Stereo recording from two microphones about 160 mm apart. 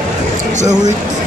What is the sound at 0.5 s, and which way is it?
Speech, 45° right (ahead or behind).